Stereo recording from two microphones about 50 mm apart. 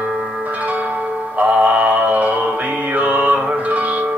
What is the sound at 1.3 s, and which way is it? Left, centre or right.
Music, right.